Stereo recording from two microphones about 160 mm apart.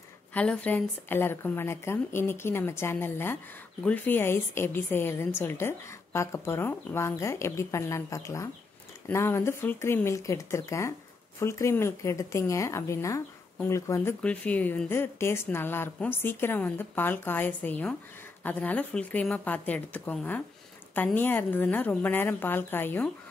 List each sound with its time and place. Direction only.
0.3 s a woman's voice: 10° left (ahead or behind)
14.2 s a woman's voice: 5° left (ahead or behind)